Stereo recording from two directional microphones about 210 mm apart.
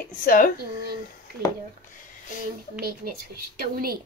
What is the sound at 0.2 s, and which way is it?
Speech, 40° left (ahead or behind).